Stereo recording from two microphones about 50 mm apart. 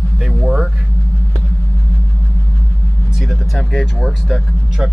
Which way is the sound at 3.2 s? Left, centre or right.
Centre.